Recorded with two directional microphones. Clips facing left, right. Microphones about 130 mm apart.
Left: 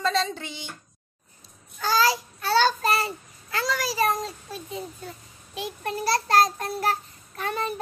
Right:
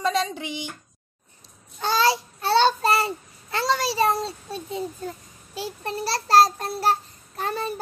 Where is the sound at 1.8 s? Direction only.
25° right (ahead or behind).